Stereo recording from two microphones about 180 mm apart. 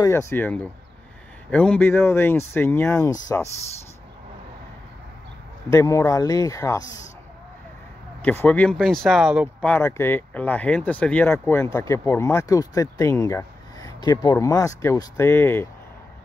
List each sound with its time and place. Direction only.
0.0 s speech: 15° left (ahead or behind)
5.7 s speech: 15° left (ahead or behind)
8.2 s speech: 10° left (ahead or behind)
9.7 s speech: 15° left (ahead or behind)